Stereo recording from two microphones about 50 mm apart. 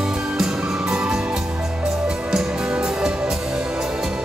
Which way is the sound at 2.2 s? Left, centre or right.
Centre.